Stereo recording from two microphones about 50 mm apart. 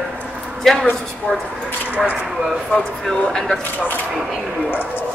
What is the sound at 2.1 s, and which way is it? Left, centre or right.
Speech, centre.